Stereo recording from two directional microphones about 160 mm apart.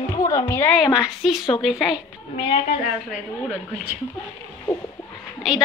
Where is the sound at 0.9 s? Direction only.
5° right (ahead or behind).